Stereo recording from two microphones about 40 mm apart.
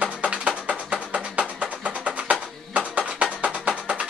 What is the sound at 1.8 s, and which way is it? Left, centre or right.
Music, right.